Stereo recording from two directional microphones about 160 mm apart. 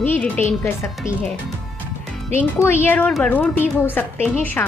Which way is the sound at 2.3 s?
15° left (ahead or behind).